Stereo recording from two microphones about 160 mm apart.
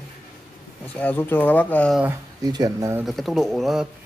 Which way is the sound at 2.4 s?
25° right (ahead or behind).